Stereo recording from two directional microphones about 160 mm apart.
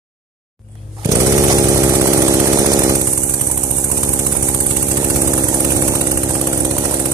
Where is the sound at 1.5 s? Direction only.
20° right (ahead or behind).